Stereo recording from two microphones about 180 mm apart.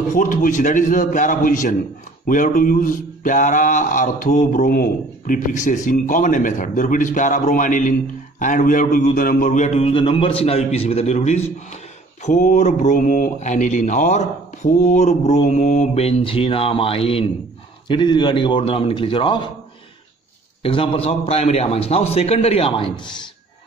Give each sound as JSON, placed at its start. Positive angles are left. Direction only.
{"t": 0.1, "sound": "mantra", "side_deg": 50}
{"t": 8.4, "sound": "a man's voice", "side_deg": 45}
{"t": 20.6, "sound": "a man's voice", "side_deg": 30}